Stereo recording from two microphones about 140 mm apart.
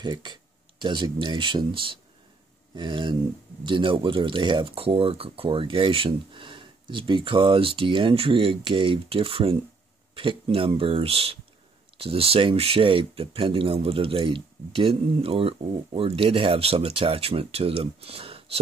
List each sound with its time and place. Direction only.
0.0 s speech: 30° right (ahead or behind)